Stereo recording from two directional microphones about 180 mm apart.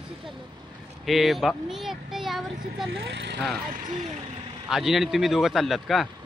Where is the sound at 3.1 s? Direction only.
75° right (ahead or behind).